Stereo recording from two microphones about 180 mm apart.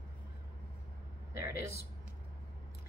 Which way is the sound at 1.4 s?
60° left (ahead or behind).